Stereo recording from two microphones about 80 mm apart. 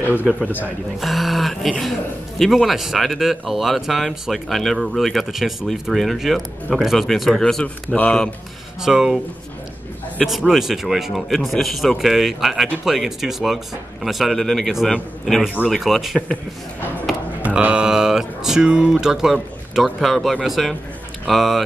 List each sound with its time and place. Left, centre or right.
0.0 s speech: left
1.0 s a man's voice: centre
8.8 s speech: centre
10.2 s a man's voice: centre
17.4 s a man's voice: centre